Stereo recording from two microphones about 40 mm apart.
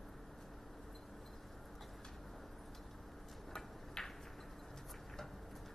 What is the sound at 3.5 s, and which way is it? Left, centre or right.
Tick-tock, centre.